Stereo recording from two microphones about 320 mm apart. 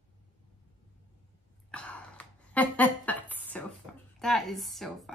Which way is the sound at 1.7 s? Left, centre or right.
Centre.